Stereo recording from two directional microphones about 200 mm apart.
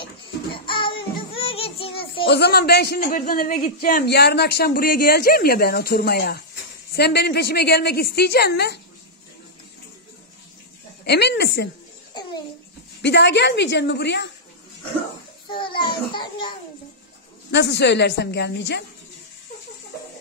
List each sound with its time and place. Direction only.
0.0 s music: 25° left (ahead or behind)
2.2 s a man's voice: 55° left (ahead or behind)
11.1 s a woman's voice: 55° left (ahead or behind)
12.1 s babbling: 20° left (ahead or behind)
13.0 s a woman's voice: 60° left (ahead or behind)
15.4 s a child's voice: 25° left (ahead or behind)
17.5 s a woman's voice: 60° left (ahead or behind)